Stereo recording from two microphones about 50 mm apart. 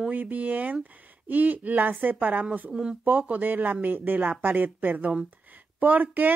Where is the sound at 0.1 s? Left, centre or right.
Right.